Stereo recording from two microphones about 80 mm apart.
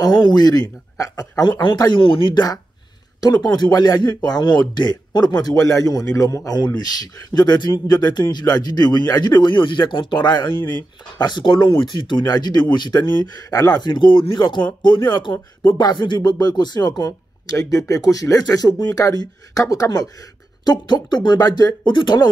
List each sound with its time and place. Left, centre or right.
0.0 s speech: left
0.9 s speech: left
2.0 s speech: left
3.2 s speech: left
20.6 s speech: left
21.4 s speech: left
21.8 s speech: left